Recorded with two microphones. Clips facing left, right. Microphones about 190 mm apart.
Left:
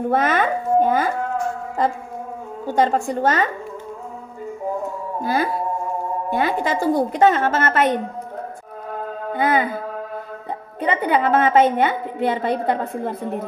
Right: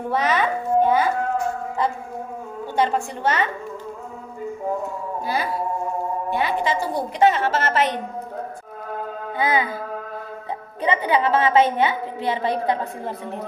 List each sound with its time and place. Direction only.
0.1 s a woman's voice: 50° left (ahead or behind)
2.6 s a woman's voice: 45° left (ahead or behind)
5.2 s a woman's voice: 50° left (ahead or behind)
9.3 s music: 50° left (ahead or behind)
10.9 s a woman's voice: 50° left (ahead or behind)